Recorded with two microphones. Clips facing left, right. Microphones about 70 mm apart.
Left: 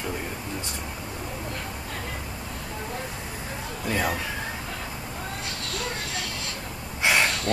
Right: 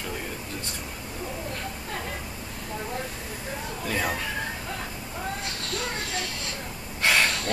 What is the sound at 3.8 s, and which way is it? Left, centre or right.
Speech, centre.